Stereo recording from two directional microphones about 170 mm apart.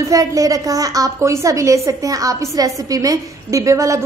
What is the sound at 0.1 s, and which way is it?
A woman's voice, 20° right (ahead or behind).